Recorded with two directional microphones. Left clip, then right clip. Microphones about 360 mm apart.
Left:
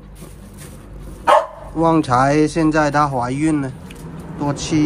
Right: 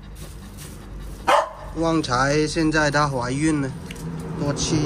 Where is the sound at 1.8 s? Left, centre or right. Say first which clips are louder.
Left 6 dB; centre.